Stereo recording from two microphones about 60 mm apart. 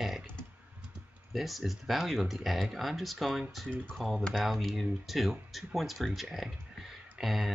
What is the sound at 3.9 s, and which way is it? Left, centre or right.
Speech, centre.